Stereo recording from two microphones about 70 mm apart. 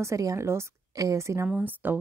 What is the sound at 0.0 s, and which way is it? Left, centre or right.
Speech, right.